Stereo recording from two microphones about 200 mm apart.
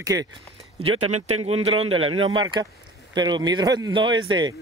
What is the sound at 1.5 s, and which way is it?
Speech, 90° right.